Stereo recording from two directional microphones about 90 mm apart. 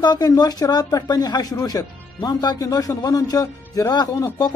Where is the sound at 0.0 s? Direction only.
50° left (ahead or behind).